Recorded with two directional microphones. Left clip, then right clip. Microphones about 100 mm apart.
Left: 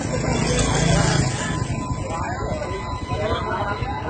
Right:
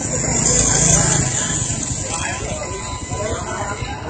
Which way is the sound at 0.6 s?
35° right (ahead or behind).